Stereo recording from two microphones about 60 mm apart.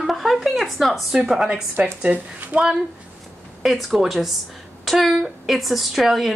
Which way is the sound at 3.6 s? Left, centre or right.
Centre.